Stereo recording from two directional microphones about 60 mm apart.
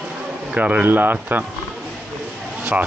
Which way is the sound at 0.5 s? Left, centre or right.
Right.